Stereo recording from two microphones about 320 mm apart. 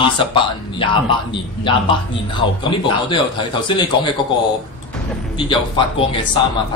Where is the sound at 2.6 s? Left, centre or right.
Centre.